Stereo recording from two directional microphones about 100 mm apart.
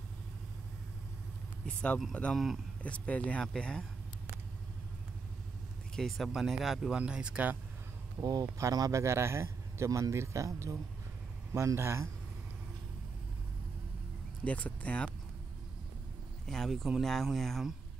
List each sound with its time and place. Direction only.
1.7 s speech: 10° left (ahead or behind)
2.3 s speech: centre (ahead or behind)
2.8 s speech: 15° left (ahead or behind)
5.9 s speech: centre (ahead or behind)
8.2 s speech: 40° right (ahead or behind)
14.4 s speech: 15° left (ahead or behind)
16.4 s speech: centre (ahead or behind)